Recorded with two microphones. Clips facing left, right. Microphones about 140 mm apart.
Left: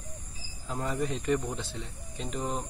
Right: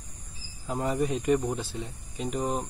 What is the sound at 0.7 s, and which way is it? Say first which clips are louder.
Speech: right 4 dB; 20° right (ahead or behind).